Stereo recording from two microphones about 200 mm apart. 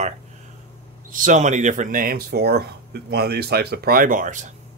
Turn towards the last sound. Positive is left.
turn(degrees=-40)  # may be behind; listen again after turning